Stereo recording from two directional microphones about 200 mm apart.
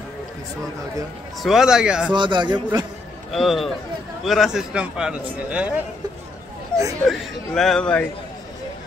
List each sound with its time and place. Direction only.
1.4 s a man's voice: centre (ahead or behind)
2.1 s speech: 25° right (ahead or behind)
3.3 s a man's voice: centre (ahead or behind)
7.0 s a man's voice: centre (ahead or behind)